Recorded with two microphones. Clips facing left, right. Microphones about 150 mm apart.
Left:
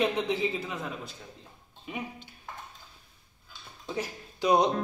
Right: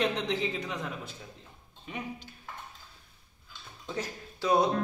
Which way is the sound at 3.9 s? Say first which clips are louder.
Left 2 dB; 15° left (ahead or behind).